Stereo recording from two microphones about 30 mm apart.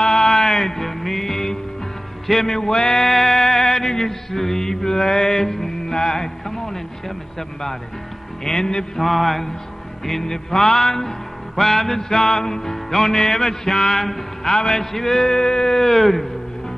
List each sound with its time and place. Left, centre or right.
0.0 s music: left
2.2 s a sound: centre
8.5 s music: left
8.9 s mantra: centre
10.2 s music: centre